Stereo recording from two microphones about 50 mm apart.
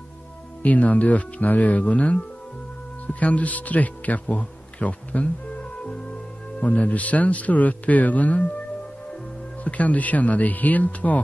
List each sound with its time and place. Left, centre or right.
0.6 s speech: left
9.7 s speech: left